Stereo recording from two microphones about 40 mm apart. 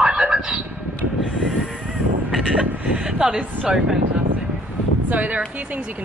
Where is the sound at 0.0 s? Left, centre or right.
Centre.